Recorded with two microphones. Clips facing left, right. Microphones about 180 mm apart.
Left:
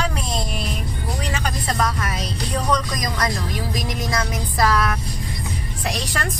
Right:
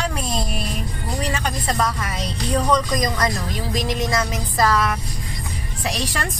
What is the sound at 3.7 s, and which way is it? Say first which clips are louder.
Music: right 5 dB; 5° left (ahead or behind).